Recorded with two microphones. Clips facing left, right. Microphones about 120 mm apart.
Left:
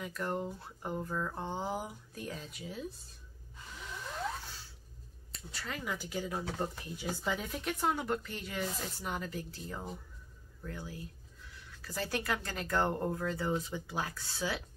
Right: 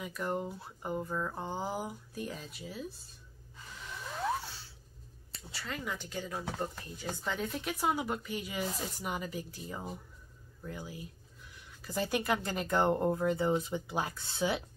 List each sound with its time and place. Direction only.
0.0 s speech: 5° right (ahead or behind)
5.5 s speech: centre (ahead or behind); by 14.6 s 20° right (ahead or behind)